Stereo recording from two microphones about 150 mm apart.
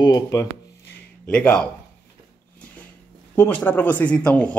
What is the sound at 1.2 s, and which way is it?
Speech, 10° left (ahead or behind).